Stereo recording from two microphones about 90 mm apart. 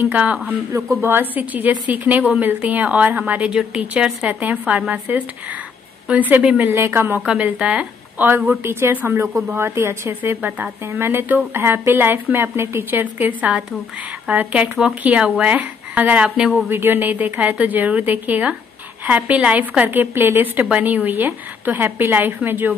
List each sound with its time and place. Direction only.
0.0 s a woman's voice: 15° right (ahead or behind)
0.7 s a woman's voice: 30° right (ahead or behind)
6.7 s a woman's voice: 30° right (ahead or behind)
7.2 s a woman's voice: 15° right (ahead or behind)
16.6 s a woman's voice: 25° right (ahead or behind)